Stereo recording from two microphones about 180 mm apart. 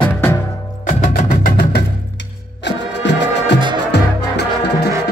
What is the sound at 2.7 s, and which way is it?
Music, 75° left (ahead or behind).